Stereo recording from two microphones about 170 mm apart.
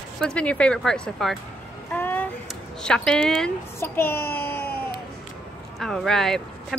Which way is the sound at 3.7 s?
15° left (ahead or behind).